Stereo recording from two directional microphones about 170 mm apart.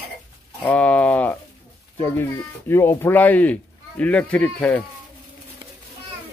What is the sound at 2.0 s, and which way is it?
A child's voice, 15° left (ahead or behind).